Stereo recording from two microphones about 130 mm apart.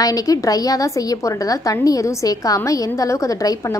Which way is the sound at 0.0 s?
30° left (ahead or behind).